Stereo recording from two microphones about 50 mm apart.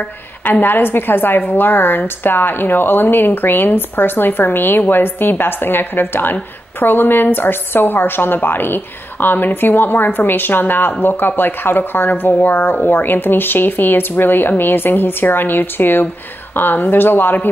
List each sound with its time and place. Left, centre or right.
0.4 s a woman's voice: left